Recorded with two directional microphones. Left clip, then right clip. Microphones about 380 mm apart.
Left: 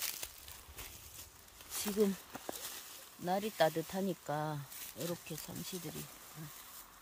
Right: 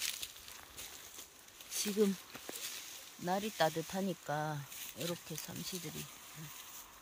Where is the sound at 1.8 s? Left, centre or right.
Centre.